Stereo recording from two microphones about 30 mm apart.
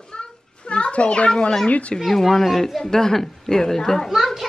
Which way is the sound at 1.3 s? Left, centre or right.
Left.